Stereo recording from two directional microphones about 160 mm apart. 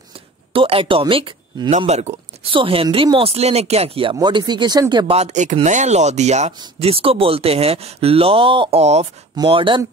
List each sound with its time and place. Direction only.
0.5 s speech: 35° right (ahead or behind)
1.8 s speech: 40° right (ahead or behind)
5.1 s speech: 45° right (ahead or behind)